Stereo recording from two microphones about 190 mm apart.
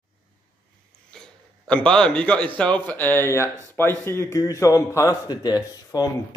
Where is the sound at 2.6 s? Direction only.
5° left (ahead or behind).